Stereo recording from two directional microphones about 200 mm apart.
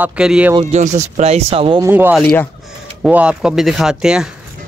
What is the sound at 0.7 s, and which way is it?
Speech, 35° right (ahead or behind).